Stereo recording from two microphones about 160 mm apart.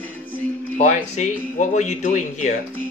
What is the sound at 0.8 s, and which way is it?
Speech, 50° left (ahead or behind).